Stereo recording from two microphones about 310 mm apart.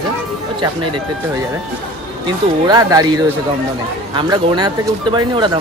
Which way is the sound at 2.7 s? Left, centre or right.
Centre.